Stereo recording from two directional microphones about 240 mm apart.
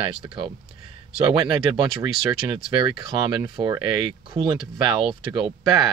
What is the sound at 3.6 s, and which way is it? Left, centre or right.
Speech, right.